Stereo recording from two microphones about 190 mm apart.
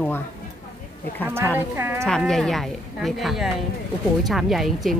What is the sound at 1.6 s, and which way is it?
Speech, 10° right (ahead or behind).